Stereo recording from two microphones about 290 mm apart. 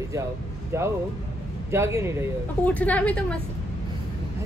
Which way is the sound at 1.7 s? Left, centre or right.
Centre.